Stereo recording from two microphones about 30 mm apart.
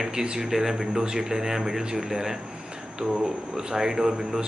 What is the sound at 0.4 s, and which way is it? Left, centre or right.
Speech, centre.